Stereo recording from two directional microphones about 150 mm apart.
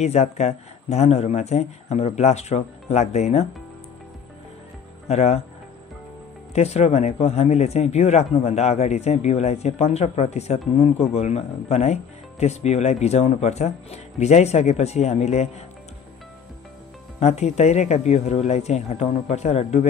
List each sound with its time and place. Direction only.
0.0 s speech: 45° left (ahead or behind)
5.0 s speech: 45° left (ahead or behind)
6.5 s speech: 45° left (ahead or behind)
17.2 s speech: 50° left (ahead or behind)